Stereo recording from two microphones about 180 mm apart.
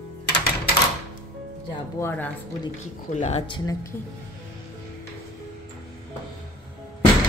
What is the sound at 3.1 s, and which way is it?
Speech, 40° left (ahead or behind).